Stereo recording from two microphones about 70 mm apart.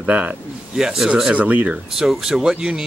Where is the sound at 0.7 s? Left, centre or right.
Centre.